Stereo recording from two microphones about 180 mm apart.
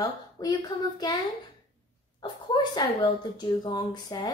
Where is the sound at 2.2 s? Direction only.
25° left (ahead or behind).